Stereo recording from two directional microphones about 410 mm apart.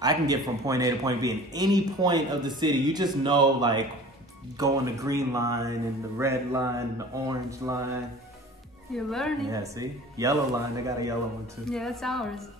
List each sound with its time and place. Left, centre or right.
0.0 s speech: centre
8.9 s a woman's voice: centre